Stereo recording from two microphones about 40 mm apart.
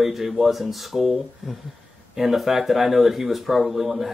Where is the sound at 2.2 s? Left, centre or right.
Centre.